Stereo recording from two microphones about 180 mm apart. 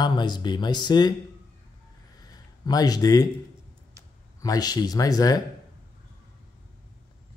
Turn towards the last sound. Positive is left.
turn(degrees=20)  # may be behind; listen again after turning